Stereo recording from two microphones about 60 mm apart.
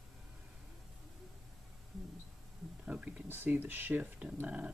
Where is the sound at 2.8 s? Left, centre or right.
Centre.